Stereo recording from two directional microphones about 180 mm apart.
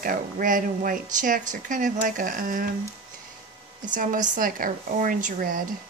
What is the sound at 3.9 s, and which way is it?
Speech, 45° right (ahead or behind).